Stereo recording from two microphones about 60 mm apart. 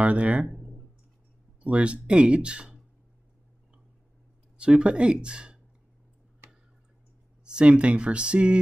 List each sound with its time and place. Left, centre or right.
0.0 s speech: right
0.5 s a sound: centre
1.6 s speech: centre
4.6 s speech: centre
7.4 s speech: centre